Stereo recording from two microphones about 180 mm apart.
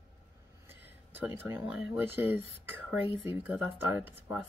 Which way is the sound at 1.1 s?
10° right (ahead or behind).